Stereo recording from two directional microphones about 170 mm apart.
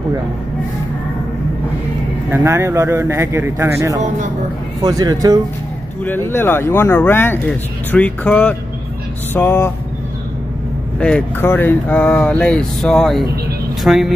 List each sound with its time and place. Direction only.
2.3 s speech: 15° right (ahead or behind)
6.0 s speech: 10° left (ahead or behind)
11.0 s speech: 5° left (ahead or behind)